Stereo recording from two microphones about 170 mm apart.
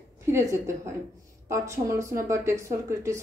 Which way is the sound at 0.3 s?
15° right (ahead or behind).